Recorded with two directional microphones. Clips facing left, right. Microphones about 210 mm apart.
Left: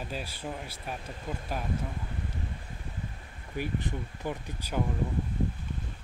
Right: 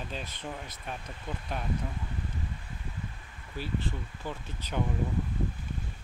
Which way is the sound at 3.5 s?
15° left (ahead or behind).